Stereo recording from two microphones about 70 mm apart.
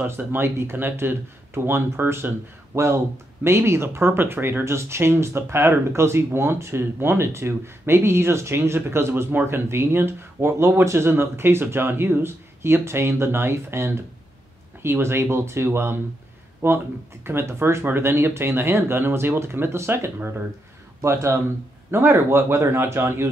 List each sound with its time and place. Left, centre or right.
0.0 s speech: right